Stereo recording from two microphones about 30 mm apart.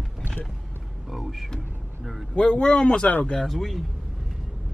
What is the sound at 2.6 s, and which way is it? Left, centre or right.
Speech, left.